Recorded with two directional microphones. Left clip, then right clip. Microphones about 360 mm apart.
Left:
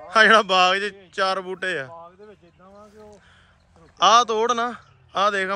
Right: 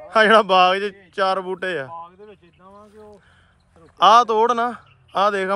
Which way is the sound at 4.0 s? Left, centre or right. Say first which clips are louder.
Right 3 dB; centre.